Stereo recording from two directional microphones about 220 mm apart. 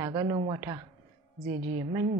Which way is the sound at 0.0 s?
20° right (ahead or behind).